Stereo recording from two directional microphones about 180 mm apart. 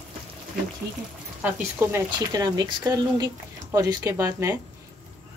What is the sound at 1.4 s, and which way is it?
Speech, 10° right (ahead or behind).